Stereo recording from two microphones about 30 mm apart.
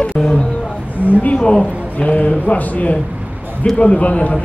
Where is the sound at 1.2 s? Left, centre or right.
Left.